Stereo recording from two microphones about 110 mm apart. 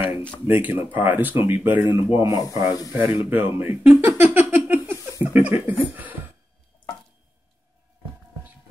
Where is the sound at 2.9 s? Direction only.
20° right (ahead or behind).